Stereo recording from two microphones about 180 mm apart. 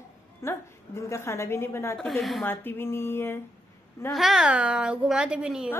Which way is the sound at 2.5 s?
10° left (ahead or behind).